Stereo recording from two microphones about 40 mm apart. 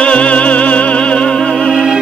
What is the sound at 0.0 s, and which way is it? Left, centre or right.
Music, left.